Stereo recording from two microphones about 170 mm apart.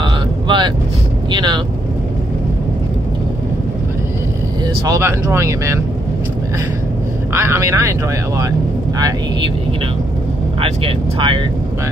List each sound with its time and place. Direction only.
0.0 s vehicle: 30° right (ahead or behind)
1.3 s speech: 25° right (ahead or behind)
4.8 s speech: 20° right (ahead or behind)
7.3 s speech: 15° right (ahead or behind)
10.6 s speech: 30° right (ahead or behind)